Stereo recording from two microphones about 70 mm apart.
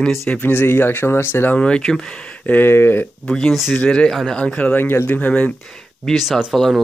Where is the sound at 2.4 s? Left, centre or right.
Left.